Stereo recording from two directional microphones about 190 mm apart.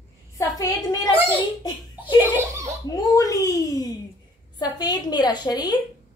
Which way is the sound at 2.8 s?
20° left (ahead or behind).